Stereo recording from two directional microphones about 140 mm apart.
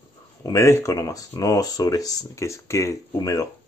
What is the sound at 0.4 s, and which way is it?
Speech, 25° left (ahead or behind).